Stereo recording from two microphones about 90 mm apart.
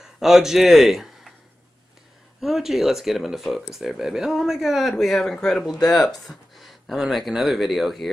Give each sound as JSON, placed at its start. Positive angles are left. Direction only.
{"t": 0.0, "sound": "speech", "side_deg": -5}
{"t": 2.4, "sound": "speech", "side_deg": 0}